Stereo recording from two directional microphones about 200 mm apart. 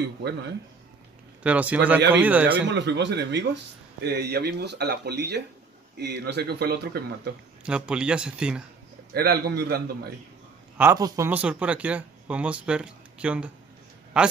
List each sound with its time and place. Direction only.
1.4 s speech: 5° right (ahead or behind)
2.6 s speech: 60° right (ahead or behind)
7.6 s speech: 5° right (ahead or behind)
9.1 s a man's voice: 50° right (ahead or behind)
10.8 s speech: 15° right (ahead or behind)